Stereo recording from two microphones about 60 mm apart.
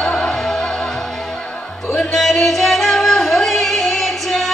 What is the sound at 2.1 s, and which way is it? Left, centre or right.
Music, centre.